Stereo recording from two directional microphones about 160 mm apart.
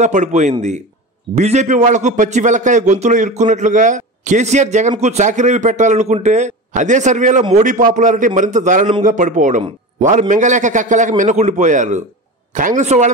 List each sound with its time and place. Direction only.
0.0 s a man's voice: 50° right (ahead or behind)